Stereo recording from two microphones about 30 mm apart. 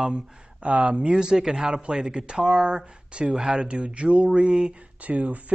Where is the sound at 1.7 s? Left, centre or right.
Right.